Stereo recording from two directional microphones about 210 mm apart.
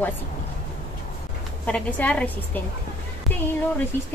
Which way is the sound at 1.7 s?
5° left (ahead or behind).